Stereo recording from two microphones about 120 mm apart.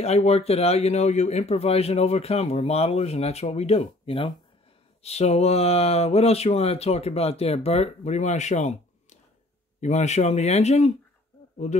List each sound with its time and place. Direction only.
0.0 s a man's voice: 65° left (ahead or behind)
5.0 s a man's voice: 65° left (ahead or behind)